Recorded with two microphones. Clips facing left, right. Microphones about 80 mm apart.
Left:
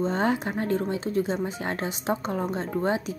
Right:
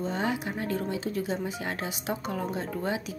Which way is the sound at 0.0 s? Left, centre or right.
Left.